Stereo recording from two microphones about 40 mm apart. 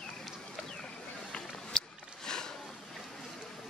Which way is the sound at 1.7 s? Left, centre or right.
Centre.